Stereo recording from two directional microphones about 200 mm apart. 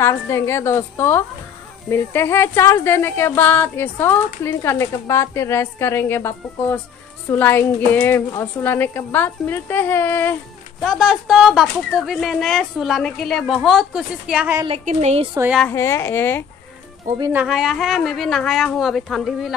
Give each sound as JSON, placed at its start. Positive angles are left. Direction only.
{"t": 0.0, "sound": "speech", "side_deg": 15}
{"t": 10.8, "sound": "speech", "side_deg": 0}
{"t": 14.9, "sound": "a woman's voice", "side_deg": -35}
{"t": 15.3, "sound": "a woman's voice", "side_deg": -10}
{"t": 15.6, "sound": "speech", "side_deg": 15}
{"t": 17.2, "sound": "speech", "side_deg": -10}